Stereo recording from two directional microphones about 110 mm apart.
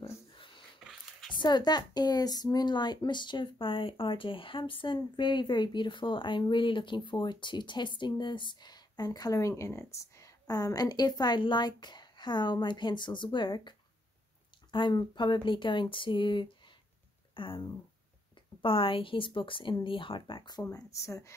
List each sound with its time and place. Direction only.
1.3 s speech: 45° left (ahead or behind)
20.7 s speech: 30° left (ahead or behind)